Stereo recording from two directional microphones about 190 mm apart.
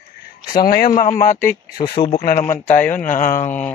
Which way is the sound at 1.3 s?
10° left (ahead or behind).